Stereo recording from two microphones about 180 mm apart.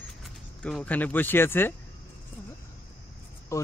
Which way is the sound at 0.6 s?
5° left (ahead or behind).